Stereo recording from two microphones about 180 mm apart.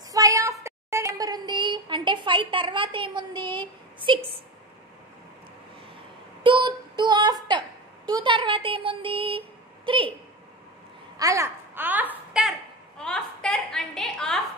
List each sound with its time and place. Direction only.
0.1 s child singing: 20° right (ahead or behind)
6.4 s child singing: 25° right (ahead or behind)
8.1 s speech: 25° right (ahead or behind)
11.1 s babbling: 20° right (ahead or behind); by 14.4 s 5° left (ahead or behind)